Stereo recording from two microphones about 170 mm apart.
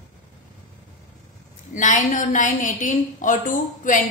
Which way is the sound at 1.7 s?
45° left (ahead or behind).